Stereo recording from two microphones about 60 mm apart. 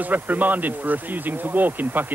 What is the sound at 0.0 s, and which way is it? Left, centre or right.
Speech, right.